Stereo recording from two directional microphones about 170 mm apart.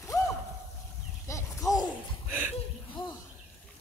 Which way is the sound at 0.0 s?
20° left (ahead or behind).